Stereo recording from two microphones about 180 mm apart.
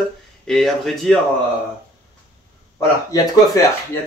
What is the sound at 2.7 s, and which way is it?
Speech, 20° left (ahead or behind).